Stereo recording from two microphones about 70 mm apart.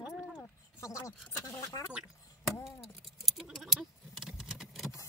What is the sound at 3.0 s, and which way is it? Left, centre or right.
Vehicle, centre.